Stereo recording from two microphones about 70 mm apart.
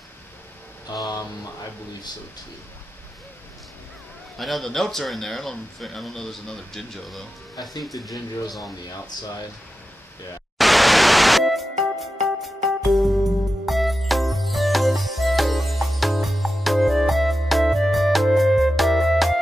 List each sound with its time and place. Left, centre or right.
0.8 s speech: left
4.4 s speech: centre
10.6 s music: centre